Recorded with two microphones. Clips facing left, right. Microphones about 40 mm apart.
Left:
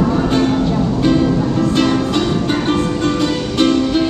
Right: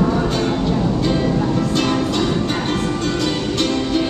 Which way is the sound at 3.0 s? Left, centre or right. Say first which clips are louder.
Left 4 dB; left.